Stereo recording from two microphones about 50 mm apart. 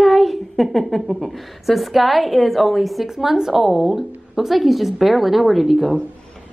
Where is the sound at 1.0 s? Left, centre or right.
Centre.